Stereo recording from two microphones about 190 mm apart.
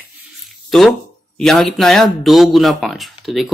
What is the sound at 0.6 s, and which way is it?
Speech, centre (ahead or behind).